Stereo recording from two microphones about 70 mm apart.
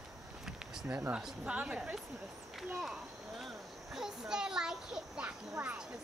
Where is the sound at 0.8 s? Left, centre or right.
Right.